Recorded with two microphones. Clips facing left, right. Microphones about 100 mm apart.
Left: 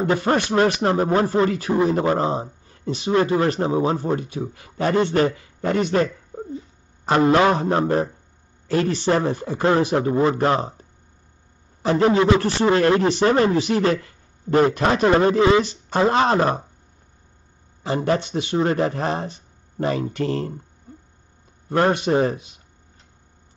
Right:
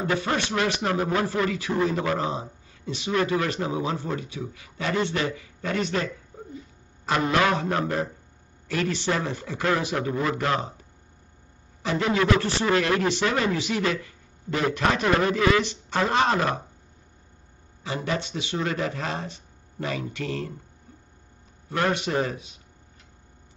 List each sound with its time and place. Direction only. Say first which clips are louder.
0.2 s a man's voice: left 7 dB; 45° left (ahead or behind); by 1.5 s 30° left (ahead or behind)
1.7 s speech: left 5 dB; 20° left (ahead or behind)
2.0 s a man's voice: left 6 dB; 35° left (ahead or behind)
2.3 s speech: left 6 dB; 45° left (ahead or behind)
3.1 s a man's voice: left 6 dB; 35° left (ahead or behind)
11.8 s a man's voice: left 8 dB; 45° left (ahead or behind)
12.1 s speech: left 5 dB; 25° left (ahead or behind)
15.6 s a man's voice: left 6 dB; 45° left (ahead or behind)
17.8 s speech: left 7 dB; 45° left (ahead or behind)
18.6 s a man's voice: left 7 dB; 35° left (ahead or behind)
21.6 s speech: left 6 dB; 40° left (ahead or behind)